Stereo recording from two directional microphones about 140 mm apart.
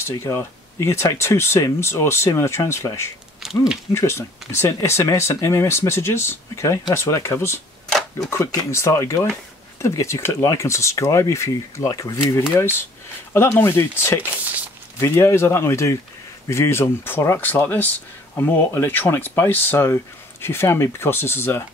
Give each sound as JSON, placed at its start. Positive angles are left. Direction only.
{"t": 0.0, "sound": "speech", "side_deg": 15}